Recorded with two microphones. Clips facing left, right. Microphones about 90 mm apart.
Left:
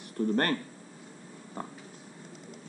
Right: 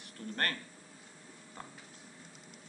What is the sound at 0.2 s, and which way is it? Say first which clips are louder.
Speech: left 15 dB; 55° left (ahead or behind).